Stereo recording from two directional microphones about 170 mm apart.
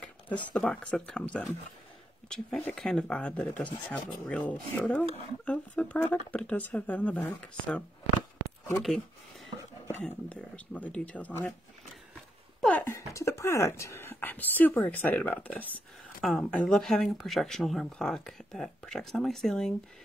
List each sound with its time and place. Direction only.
0.0 s speech: 10° left (ahead or behind)
9.8 s speech: 5° left (ahead or behind)
12.5 s speech: 5° left (ahead or behind)